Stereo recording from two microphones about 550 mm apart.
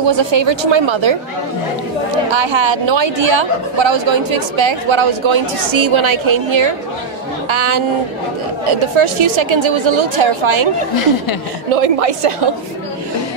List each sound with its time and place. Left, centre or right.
0.0 s a woman's voice: right
2.3 s a woman's voice: right
8.9 s a woman's voice: right
11.7 s a woman's voice: right